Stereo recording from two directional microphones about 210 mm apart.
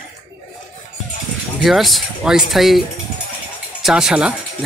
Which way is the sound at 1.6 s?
Centre (ahead or behind).